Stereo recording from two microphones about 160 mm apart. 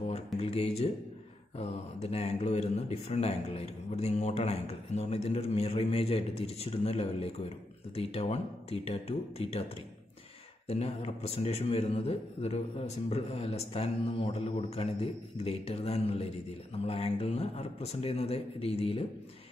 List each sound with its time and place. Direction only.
0.4 s speech: 40° left (ahead or behind)
10.7 s speech: 40° left (ahead or behind)